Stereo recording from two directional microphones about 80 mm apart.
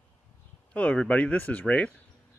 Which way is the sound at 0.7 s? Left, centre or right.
Centre.